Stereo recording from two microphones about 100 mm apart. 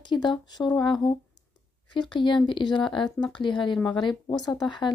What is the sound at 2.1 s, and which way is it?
Speech, 50° left (ahead or behind).